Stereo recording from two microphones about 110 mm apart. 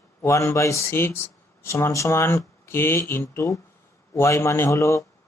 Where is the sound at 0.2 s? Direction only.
25° left (ahead or behind).